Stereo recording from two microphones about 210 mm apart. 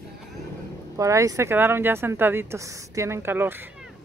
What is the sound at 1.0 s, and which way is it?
Speech, 15° right (ahead or behind).